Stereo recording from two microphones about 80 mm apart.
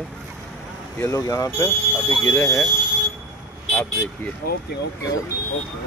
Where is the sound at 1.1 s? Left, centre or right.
Left.